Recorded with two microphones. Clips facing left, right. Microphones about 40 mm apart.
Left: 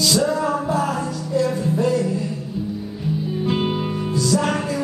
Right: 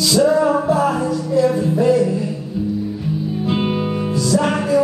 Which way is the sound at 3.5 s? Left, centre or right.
Centre.